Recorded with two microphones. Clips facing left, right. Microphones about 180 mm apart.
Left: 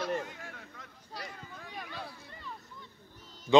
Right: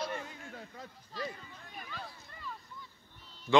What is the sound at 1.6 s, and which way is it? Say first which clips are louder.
Speech: left 3 dB; 80° left.